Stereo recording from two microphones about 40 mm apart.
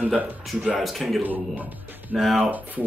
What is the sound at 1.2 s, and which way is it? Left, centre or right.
Speech, right.